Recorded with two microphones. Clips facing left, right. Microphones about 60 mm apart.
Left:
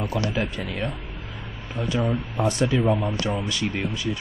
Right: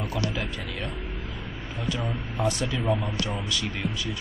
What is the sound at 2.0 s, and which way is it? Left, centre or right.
Speech, left.